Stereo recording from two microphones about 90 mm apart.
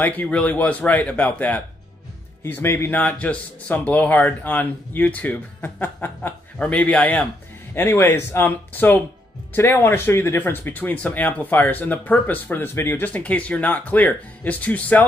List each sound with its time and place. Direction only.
0.0 s speech: 20° left (ahead or behind)
7.7 s speech: 25° left (ahead or behind)